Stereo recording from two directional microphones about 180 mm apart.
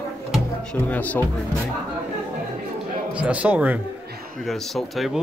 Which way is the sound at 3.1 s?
5° right (ahead or behind).